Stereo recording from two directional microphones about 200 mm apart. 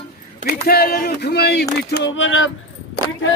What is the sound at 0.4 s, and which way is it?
Speech, 50° left (ahead or behind).